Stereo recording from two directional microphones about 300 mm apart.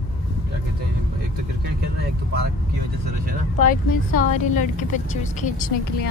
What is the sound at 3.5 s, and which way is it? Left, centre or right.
A woman's voice, left.